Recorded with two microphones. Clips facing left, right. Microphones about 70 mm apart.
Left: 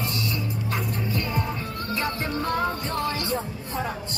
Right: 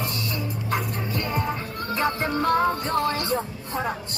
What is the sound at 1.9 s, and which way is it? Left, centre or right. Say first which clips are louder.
Music: right 4 dB; right.